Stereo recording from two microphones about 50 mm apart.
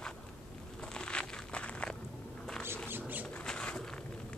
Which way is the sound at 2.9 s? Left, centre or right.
Right.